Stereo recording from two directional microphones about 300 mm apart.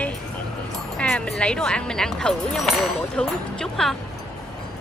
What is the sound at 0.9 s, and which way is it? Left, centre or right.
Speech, centre.